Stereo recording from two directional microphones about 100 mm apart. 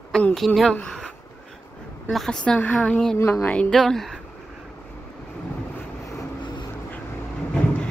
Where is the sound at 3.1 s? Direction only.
25° left (ahead or behind).